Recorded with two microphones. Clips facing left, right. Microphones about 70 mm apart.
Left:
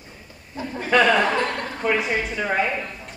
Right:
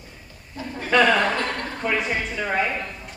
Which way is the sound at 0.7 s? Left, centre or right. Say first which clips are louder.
Left 1 dB; centre.